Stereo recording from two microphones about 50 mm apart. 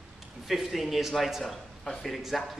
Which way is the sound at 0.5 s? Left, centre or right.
Centre.